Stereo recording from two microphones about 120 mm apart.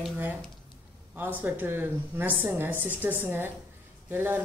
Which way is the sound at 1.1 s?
15° right (ahead or behind).